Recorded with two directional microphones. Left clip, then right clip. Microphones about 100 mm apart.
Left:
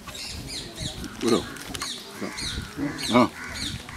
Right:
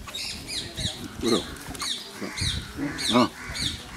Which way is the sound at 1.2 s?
5° left (ahead or behind).